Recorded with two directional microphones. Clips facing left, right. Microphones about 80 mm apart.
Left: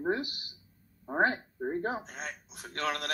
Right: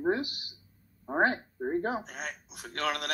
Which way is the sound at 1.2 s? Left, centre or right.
Centre.